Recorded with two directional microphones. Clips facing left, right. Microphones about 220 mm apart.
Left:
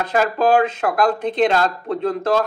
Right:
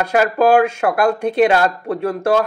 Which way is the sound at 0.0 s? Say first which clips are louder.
Right 3 dB; 10° right (ahead or behind).